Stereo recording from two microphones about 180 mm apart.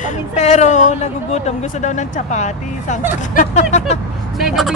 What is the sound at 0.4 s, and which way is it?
Speech, 40° left (ahead or behind).